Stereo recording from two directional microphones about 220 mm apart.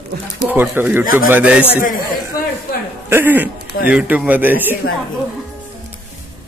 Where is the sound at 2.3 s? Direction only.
45° left (ahead or behind).